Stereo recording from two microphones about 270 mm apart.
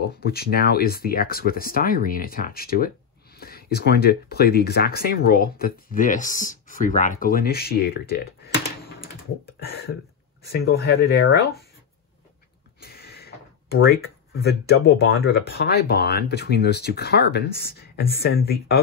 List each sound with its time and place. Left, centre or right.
0.2 s speech: left
9.6 s speech: left
13.7 s speech: left